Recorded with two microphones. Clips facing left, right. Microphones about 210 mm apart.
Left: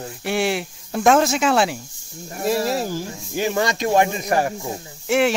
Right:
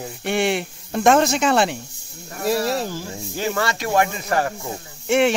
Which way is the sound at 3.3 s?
15° left (ahead or behind).